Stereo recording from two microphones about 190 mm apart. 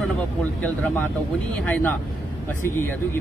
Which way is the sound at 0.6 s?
10° left (ahead or behind).